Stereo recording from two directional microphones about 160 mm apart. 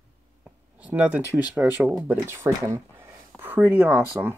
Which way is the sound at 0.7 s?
10° right (ahead or behind).